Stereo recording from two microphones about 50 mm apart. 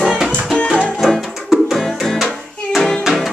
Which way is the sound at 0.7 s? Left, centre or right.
Centre.